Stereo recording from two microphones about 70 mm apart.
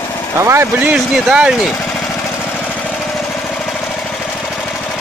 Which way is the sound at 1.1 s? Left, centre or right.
Centre.